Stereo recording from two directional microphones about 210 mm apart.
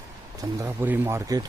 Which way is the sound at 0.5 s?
10° right (ahead or behind).